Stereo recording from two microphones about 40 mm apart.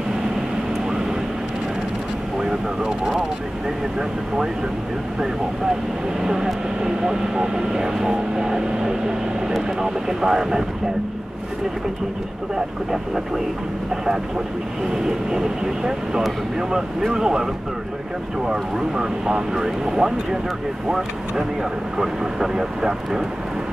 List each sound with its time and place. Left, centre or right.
2.3 s vehicle: centre
6.2 s speech: centre
12.5 s speech: centre
15.0 s speech: centre
21.9 s speech: centre